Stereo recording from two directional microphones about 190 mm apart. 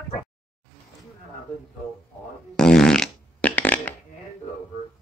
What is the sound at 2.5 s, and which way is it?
Fart, 5° left (ahead or behind).